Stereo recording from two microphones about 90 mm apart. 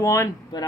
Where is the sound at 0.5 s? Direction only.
55° left (ahead or behind).